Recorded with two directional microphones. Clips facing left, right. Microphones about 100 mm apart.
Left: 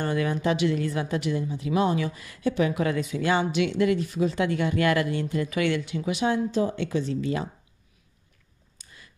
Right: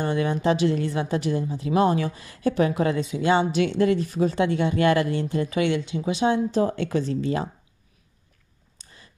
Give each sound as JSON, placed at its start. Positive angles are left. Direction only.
{"t": 0.0, "sound": "a woman's voice", "side_deg": -25}
{"t": 3.5, "sound": "a woman's voice", "side_deg": -35}
{"t": 4.4, "sound": "speech", "side_deg": -25}
{"t": 6.5, "sound": "speech", "side_deg": -45}
{"t": 7.2, "sound": "a woman's voice", "side_deg": -35}
{"t": 8.7, "sound": "a sound", "side_deg": -30}